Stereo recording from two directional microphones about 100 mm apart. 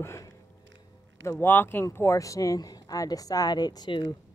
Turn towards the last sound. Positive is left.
turn(degrees=45)  # may be behind; listen again after turning